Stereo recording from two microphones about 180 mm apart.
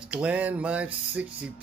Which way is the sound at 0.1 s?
10° right (ahead or behind).